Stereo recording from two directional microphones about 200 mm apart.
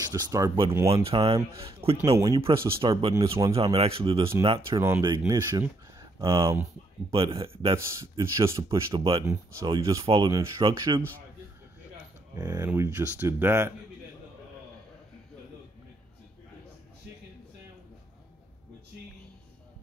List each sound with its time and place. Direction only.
0.1 s speech: 20° right (ahead or behind)
1.1 s speech: 30° right (ahead or behind)
2.1 s speech: 15° right (ahead or behind)
7.1 s speech: 25° right (ahead or behind)
7.7 s speech: 15° right (ahead or behind)
8.9 s speech: 25° right (ahead or behind)
9.3 s speech: 15° right (ahead or behind)
12.4 s speech: 10° right (ahead or behind)